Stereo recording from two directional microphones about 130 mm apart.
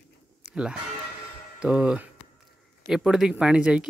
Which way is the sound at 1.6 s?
5° right (ahead or behind).